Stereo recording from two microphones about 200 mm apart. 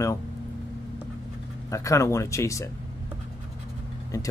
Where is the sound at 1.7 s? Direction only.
15° left (ahead or behind).